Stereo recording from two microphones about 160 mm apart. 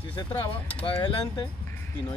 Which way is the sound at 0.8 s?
25° left (ahead or behind).